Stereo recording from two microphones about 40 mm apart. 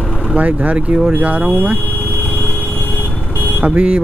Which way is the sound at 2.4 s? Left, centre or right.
Left.